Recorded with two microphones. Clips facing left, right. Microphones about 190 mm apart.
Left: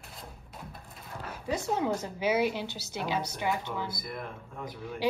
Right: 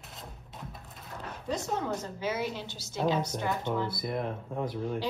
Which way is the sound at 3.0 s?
10° left (ahead or behind).